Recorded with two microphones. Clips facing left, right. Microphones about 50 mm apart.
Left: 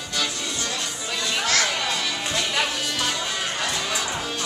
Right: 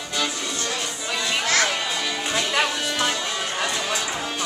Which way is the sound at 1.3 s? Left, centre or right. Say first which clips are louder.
Right 1 dB; centre.